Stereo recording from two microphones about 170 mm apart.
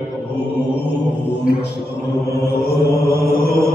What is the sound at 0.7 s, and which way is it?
Mantra, 90° left.